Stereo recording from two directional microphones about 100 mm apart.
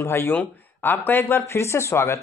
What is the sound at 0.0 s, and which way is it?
Speech, 25° left (ahead or behind).